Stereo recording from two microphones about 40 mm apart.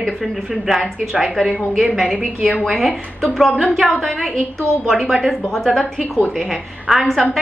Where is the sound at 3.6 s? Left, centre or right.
Centre.